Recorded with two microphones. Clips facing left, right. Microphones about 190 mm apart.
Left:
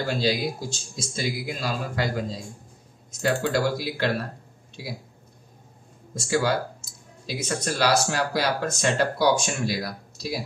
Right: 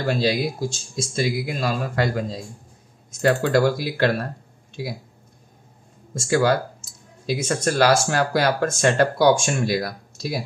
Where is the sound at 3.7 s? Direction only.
55° right (ahead or behind).